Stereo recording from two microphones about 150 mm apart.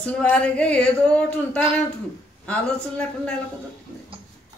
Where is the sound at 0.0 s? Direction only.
10° left (ahead or behind).